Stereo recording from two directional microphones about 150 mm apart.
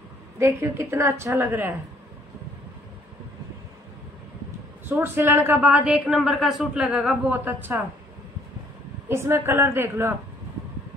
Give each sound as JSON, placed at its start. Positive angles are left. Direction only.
{"t": 0.4, "sound": "a woman's voice", "side_deg": -15}
{"t": 4.8, "sound": "a woman's voice", "side_deg": -15}
{"t": 9.1, "sound": "a woman's voice", "side_deg": -15}